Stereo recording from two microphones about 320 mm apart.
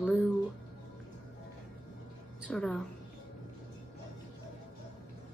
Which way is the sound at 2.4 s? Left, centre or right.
Centre.